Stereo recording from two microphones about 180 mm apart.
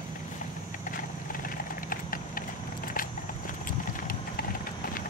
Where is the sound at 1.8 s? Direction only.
50° left (ahead or behind).